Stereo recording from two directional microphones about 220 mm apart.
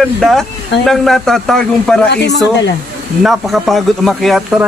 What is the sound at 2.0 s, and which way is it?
Speech, 50° left (ahead or behind).